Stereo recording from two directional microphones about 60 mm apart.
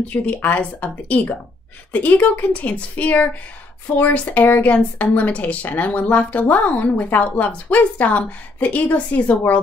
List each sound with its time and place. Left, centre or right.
0.1 s a woman's voice: left
4.7 s a woman's voice: left